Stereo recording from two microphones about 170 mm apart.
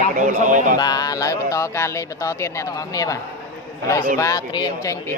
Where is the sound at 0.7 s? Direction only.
25° left (ahead or behind).